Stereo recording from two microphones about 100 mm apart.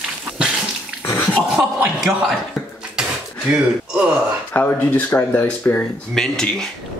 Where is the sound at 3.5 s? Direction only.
10° right (ahead or behind).